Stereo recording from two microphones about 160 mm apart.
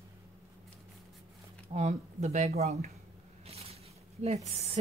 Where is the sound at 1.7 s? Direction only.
45° right (ahead or behind).